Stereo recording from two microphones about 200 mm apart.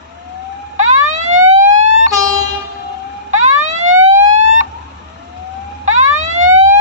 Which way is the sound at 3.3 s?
35° right (ahead or behind).